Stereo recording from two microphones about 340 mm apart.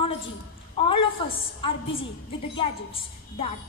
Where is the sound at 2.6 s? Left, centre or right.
Centre.